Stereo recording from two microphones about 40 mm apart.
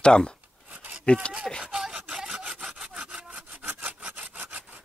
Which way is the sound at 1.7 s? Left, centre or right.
Centre.